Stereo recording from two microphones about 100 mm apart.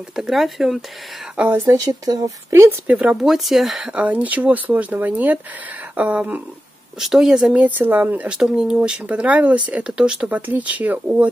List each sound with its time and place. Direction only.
0.1 s speech: 5° right (ahead or behind)
1.3 s speech: 15° right (ahead or behind)
1.7 s speech: 40° right (ahead or behind)
2.5 s speech: 20° right (ahead or behind)
3.1 s speech: 5° right (ahead or behind)
7.0 s speech: 5° right (ahead or behind)
7.5 s speech: 15° right (ahead or behind)